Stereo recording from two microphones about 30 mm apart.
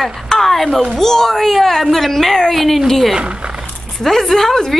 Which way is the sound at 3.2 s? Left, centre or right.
Right.